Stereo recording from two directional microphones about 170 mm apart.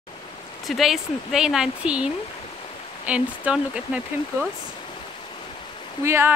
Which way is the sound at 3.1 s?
5° right (ahead or behind).